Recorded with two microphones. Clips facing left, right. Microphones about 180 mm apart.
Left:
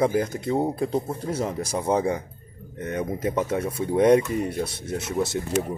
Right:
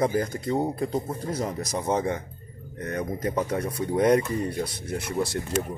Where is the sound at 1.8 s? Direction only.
10° left (ahead or behind).